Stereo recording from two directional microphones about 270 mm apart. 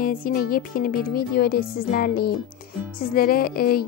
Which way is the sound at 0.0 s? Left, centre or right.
Left.